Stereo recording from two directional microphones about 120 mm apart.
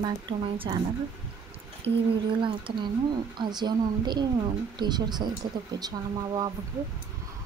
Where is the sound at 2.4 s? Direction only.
45° right (ahead or behind).